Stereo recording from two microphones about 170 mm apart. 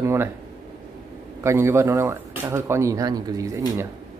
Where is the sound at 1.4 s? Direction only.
15° right (ahead or behind).